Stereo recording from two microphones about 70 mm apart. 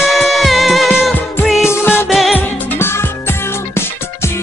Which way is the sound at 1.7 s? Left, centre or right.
Left.